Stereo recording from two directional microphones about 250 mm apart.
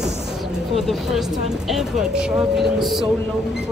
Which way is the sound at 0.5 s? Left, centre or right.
Centre.